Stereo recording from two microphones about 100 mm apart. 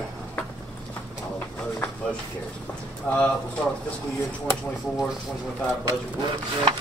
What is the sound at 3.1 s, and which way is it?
Speech, 15° left (ahead or behind).